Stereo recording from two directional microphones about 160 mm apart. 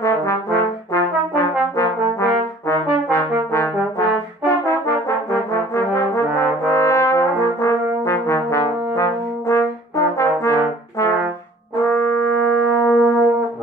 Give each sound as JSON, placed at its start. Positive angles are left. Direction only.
{"t": 0.0, "sound": "trombone", "side_deg": 20}
{"t": 1.8, "sound": "brass instrument", "side_deg": 20}